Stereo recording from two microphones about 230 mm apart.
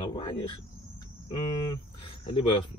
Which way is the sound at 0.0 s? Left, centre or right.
Left.